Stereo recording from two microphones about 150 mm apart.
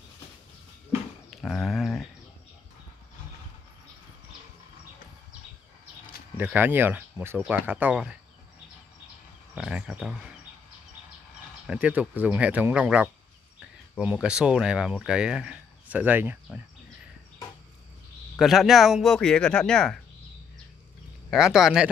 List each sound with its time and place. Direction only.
1.4 s a sound: centre (ahead or behind)
6.3 s speech: 10° right (ahead or behind)
9.6 s speech: 5° right (ahead or behind)
11.6 s speech: 10° right (ahead or behind)
18.4 s speech: centre (ahead or behind)
21.3 s speech: 5° right (ahead or behind)